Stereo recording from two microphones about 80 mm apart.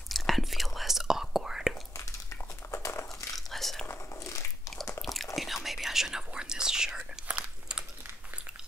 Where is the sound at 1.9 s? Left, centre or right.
Left.